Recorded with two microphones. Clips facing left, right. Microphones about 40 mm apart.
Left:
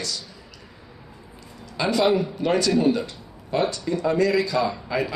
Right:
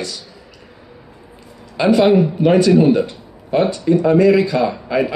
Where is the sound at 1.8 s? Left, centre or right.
Right.